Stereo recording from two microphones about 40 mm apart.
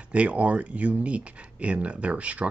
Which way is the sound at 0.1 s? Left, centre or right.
Right.